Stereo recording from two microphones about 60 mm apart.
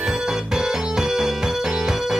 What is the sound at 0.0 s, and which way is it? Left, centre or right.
Music, centre.